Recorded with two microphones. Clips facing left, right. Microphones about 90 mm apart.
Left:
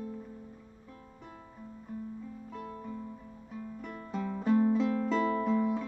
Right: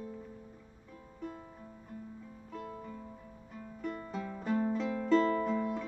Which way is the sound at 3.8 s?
Centre (ahead or behind).